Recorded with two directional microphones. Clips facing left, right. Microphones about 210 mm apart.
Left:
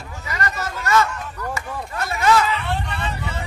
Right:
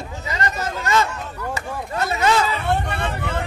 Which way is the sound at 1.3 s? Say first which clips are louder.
Right 2 dB; 10° right (ahead or behind).